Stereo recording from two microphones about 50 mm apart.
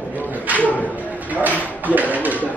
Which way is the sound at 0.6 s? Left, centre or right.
Left.